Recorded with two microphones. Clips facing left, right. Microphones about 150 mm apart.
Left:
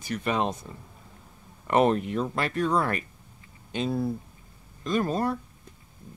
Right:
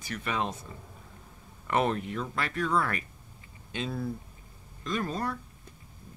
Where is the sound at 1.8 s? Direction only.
30° left (ahead or behind).